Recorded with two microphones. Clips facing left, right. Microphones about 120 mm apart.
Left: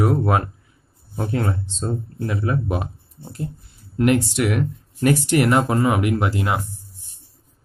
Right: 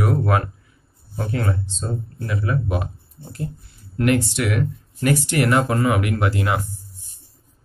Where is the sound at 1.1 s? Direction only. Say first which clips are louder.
Left 1 dB; 30° left (ahead or behind).